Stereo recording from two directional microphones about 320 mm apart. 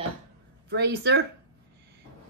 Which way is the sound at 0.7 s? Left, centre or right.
Right.